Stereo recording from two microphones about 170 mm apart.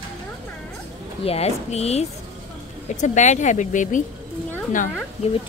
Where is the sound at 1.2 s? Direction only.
35° left (ahead or behind).